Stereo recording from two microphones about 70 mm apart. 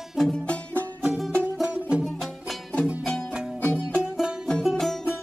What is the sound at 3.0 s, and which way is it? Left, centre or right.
Music, centre.